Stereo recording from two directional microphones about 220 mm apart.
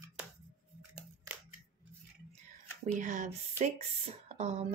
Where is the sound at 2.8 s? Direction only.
35° right (ahead or behind).